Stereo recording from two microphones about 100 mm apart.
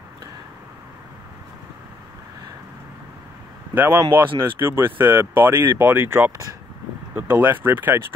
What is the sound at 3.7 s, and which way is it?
Speech, 20° right (ahead or behind).